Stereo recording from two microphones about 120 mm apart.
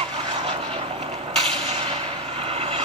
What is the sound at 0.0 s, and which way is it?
Vehicle, 60° right (ahead or behind).